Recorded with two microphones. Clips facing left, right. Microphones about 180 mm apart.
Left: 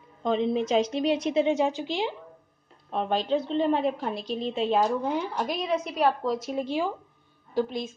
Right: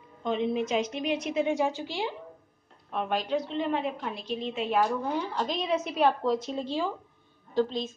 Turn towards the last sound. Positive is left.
turn(degrees=10)  # may be behind; listen again after turning